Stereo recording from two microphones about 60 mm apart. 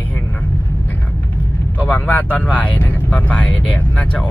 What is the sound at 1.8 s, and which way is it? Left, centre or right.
Speech, left.